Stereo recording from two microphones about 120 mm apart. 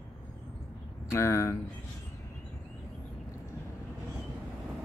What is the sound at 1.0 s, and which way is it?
Speech, 25° left (ahead or behind).